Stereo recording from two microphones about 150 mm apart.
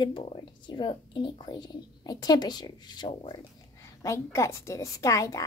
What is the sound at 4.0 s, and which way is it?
A woman's voice, 20° left (ahead or behind).